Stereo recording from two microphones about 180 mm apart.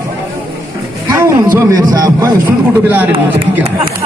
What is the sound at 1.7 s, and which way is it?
Speech, 20° right (ahead or behind).